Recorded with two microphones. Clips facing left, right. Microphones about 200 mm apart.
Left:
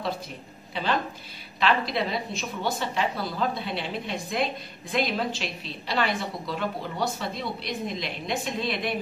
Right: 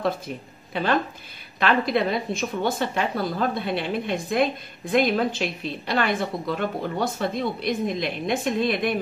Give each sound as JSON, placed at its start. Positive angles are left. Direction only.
{"t": 1.6, "sound": "a woman's voice", "side_deg": -55}